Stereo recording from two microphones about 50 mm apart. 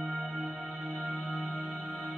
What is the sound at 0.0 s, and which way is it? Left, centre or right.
Music, right.